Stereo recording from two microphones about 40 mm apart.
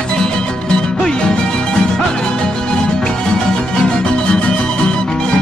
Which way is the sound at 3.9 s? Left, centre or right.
Left.